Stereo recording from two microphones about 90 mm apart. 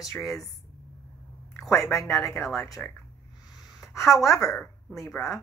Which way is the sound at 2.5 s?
35° left (ahead or behind).